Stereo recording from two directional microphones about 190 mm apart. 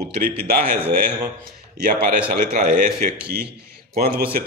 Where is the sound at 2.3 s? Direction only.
45° right (ahead or behind).